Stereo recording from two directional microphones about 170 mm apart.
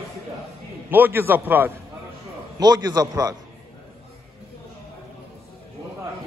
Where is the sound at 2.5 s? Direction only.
25° right (ahead or behind).